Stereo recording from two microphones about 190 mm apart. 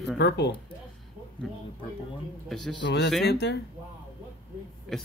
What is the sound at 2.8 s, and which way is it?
Speech, 65° left (ahead or behind).